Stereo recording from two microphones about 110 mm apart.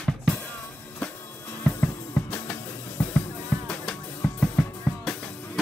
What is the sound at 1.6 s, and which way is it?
Music, 15° left (ahead or behind).